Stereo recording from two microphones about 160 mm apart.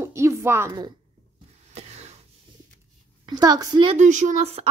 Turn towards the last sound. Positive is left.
turn(degrees=-45)  # may be behind; listen again after turning